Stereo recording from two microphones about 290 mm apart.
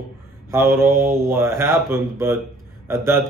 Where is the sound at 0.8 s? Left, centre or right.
Right.